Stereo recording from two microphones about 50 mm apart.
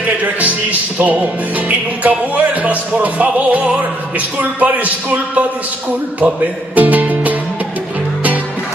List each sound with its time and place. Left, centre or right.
0.0 s music: right
6.2 s speech: right